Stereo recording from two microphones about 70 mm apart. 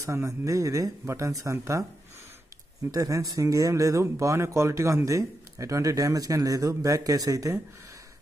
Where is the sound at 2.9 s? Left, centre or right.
Right.